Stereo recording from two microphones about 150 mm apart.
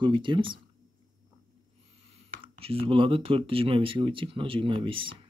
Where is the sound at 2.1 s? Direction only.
40° right (ahead or behind).